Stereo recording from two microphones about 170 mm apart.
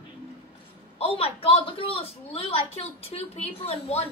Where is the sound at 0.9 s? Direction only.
35° left (ahead or behind).